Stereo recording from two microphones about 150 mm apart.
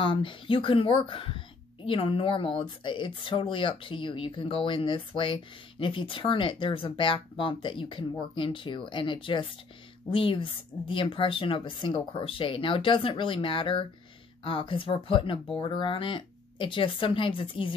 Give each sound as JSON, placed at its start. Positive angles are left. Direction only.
{"t": 0.0, "sound": "speech", "side_deg": 35}